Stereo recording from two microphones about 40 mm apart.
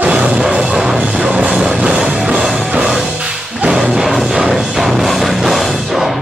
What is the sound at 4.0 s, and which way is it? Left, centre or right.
Music, centre.